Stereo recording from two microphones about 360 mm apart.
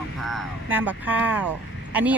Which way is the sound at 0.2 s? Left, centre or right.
Centre.